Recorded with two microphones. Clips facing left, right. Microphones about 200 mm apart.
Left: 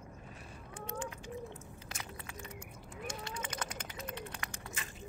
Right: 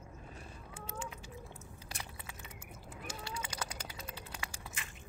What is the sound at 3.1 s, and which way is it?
Honk, 10° right (ahead or behind).